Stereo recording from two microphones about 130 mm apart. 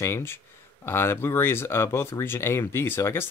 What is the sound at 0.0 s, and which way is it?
Speech, 20° left (ahead or behind).